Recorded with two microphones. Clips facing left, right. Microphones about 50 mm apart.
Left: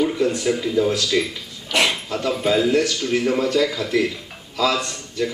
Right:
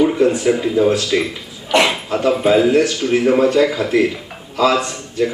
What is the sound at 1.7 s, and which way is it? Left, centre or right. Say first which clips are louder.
Speech: right 5 dB; centre.